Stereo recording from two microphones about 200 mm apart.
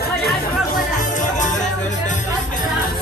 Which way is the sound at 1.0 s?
40° left (ahead or behind).